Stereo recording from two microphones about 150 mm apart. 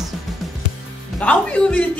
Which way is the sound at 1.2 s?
10° left (ahead or behind).